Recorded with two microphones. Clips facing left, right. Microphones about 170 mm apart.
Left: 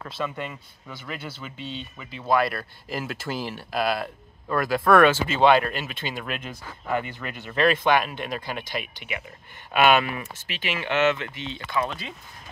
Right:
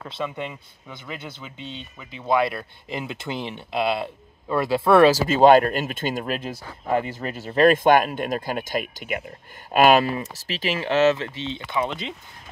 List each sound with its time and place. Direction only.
0.2 s speech: 15° right (ahead or behind)
2.1 s speech: 20° right (ahead or behind)